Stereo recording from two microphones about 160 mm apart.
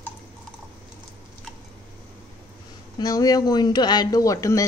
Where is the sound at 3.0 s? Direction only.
25° left (ahead or behind).